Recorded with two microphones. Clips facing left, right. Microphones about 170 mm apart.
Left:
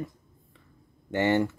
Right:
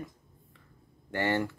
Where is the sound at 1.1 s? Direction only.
20° left (ahead or behind).